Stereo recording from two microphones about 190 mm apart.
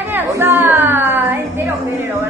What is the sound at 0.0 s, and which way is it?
Music, 10° right (ahead or behind).